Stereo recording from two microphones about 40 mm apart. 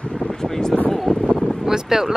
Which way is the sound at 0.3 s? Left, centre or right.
Centre.